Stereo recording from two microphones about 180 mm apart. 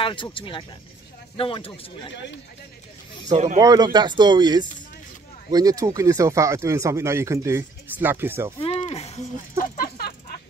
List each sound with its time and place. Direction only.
0.0 s speech: 30° left (ahead or behind)
3.5 s speech: 20° right (ahead or behind)
8.5 s speech: 30° left (ahead or behind)
9.8 s a sound: 60° left (ahead or behind)